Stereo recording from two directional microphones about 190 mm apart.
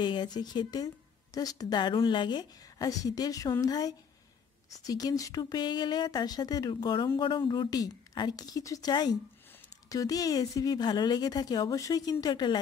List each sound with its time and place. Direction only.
0.0 s a woman's voice: 25° left (ahead or behind)